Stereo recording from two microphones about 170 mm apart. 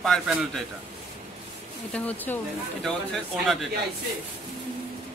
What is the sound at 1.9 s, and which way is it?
Speech, 10° left (ahead or behind).